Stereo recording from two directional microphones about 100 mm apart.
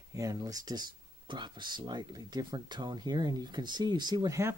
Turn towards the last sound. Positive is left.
turn(degrees=-45)  # may be behind; listen again after turning